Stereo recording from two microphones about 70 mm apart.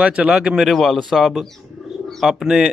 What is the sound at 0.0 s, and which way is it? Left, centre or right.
Speech, centre.